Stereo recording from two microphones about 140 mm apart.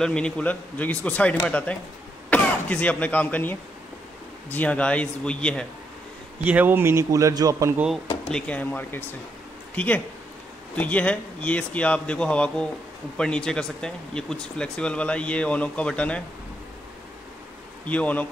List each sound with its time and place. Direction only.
0.0 s speech: 5° left (ahead or behind)
6.4 s a man's voice: 10° right (ahead or behind)
7.7 s speech: 5° right (ahead or behind)
8.3 s speech: 5° left (ahead or behind)
17.8 s speech: 10° left (ahead or behind)